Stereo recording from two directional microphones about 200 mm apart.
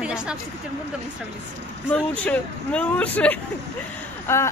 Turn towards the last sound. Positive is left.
turn(degrees=10)  # may be behind; listen again after turning